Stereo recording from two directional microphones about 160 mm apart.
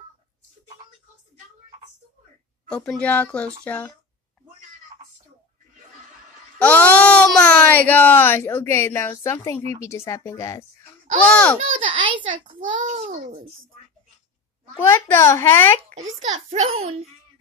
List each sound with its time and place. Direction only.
2.7 s speech: 5° left (ahead or behind)
6.6 s speech: 10° left (ahead or behind)
11.2 s speech: 5° left (ahead or behind)
11.8 s a child's voice: 35° right (ahead or behind)
14.8 s speech: 15° left (ahead or behind)
16.3 s a child's voice: 40° right (ahead or behind)